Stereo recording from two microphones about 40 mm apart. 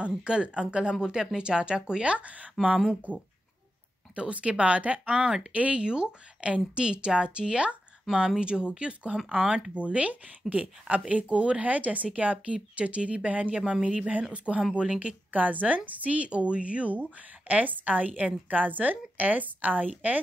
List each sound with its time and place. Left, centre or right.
0.2 s a woman's voice: right
2.0 s a woman's voice: right
9.8 s a woman's voice: right
13.6 s a woman's voice: centre
13.8 s a woman's voice: right
15.0 s a woman's voice: right